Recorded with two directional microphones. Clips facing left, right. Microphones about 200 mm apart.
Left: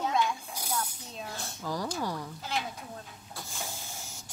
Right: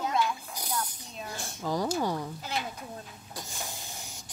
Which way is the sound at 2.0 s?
20° right (ahead or behind).